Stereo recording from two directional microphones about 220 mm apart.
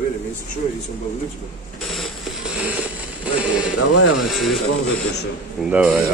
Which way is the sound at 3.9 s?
90° left.